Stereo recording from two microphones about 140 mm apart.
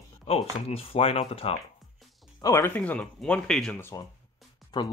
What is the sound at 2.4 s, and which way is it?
Speech, 15° left (ahead or behind).